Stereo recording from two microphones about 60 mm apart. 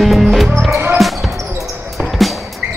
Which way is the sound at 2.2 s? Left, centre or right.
Centre.